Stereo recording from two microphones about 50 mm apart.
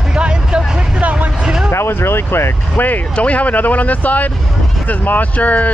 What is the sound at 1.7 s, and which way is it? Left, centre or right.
Vehicle, left.